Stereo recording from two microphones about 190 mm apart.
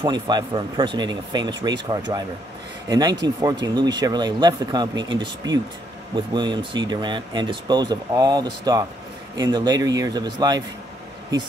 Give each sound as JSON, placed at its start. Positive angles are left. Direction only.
{"t": 0.0, "sound": "speech", "side_deg": -25}